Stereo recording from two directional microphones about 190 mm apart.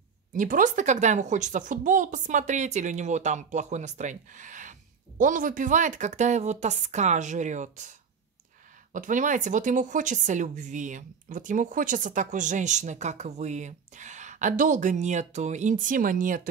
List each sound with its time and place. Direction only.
0.3 s speech: 45° right (ahead or behind)
8.9 s speech: 40° right (ahead or behind)